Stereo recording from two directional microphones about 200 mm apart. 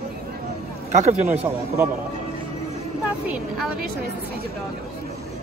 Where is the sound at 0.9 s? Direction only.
35° right (ahead or behind).